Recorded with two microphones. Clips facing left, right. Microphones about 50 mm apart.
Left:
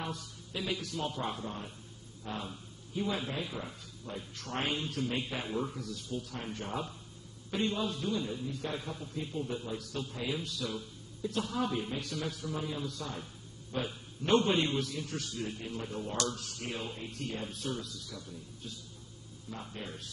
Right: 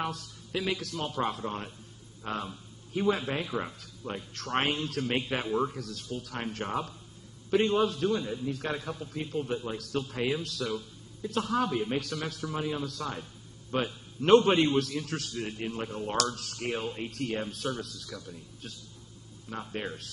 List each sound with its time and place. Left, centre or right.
0.0 s a man's voice: right
7.5 s a man's voice: right
8.0 s a man's voice: right
13.7 s a man's voice: right
14.2 s a man's voice: right
16.3 s a man's voice: right
16.7 s a man's voice: right